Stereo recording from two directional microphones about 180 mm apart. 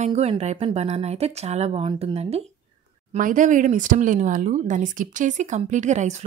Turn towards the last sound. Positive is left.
turn(degrees=-40)  # may be behind; listen again after turning